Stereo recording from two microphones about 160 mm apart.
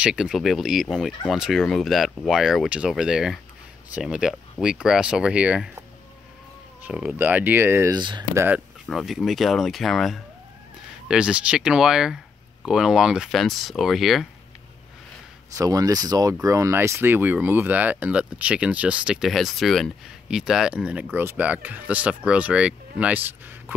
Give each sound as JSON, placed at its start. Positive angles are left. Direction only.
{"t": 0.0, "sound": "speech", "side_deg": -5}
{"t": 6.8, "sound": "speech", "side_deg": -5}
{"t": 7.9, "sound": "speech", "side_deg": -25}
{"t": 8.4, "sound": "speech", "side_deg": -10}
{"t": 15.5, "sound": "speech", "side_deg": -20}